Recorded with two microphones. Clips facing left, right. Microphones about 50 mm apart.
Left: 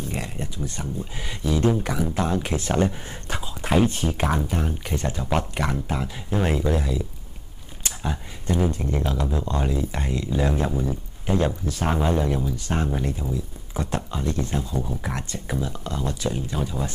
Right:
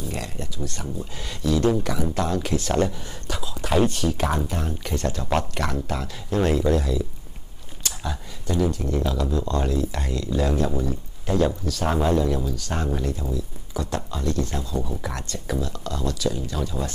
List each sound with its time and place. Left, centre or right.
0.1 s speech: left
2.9 s speech: left
3.7 s speech: left
11.9 s speech: centre